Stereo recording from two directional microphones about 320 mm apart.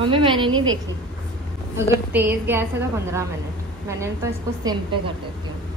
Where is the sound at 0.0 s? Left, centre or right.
Centre.